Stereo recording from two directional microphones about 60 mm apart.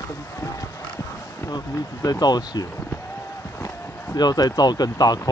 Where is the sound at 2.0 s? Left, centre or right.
Left.